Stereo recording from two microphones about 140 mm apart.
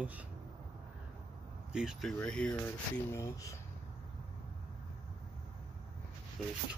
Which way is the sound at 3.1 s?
20° left (ahead or behind).